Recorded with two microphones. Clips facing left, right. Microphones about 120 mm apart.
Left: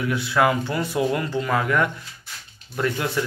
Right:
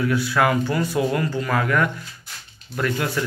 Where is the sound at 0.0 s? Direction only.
20° left (ahead or behind).